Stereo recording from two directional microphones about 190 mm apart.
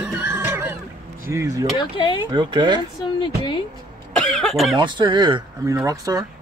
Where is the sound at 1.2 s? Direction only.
15° right (ahead or behind).